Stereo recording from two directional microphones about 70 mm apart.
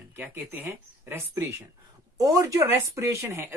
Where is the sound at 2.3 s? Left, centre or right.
Right.